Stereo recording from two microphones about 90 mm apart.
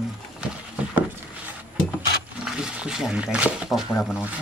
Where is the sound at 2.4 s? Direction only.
10° right (ahead or behind).